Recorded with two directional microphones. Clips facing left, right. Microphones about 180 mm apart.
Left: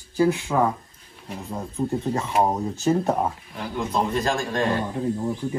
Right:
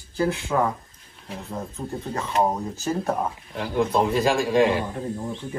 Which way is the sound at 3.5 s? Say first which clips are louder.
Right 5 dB; centre (ahead or behind).